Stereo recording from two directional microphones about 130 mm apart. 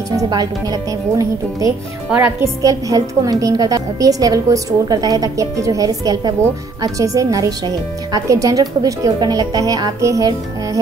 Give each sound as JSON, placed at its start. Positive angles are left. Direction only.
{"t": 0.1, "sound": "speech", "side_deg": -30}
{"t": 2.0, "sound": "a woman's voice", "side_deg": -15}
{"t": 2.6, "sound": "speech", "side_deg": -25}